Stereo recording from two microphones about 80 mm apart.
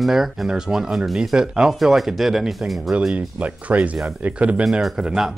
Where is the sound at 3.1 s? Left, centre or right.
Centre.